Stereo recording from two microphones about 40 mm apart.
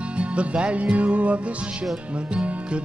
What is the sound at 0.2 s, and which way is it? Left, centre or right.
Music, right.